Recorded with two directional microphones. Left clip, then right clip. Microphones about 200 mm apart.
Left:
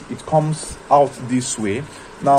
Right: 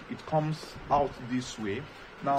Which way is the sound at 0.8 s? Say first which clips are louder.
Left 13 dB; 30° left (ahead or behind).